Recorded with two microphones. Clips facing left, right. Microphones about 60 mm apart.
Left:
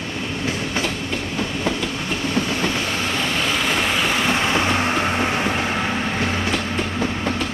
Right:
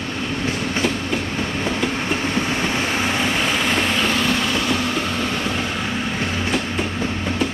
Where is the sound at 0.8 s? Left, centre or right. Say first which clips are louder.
Right 4 dB; centre.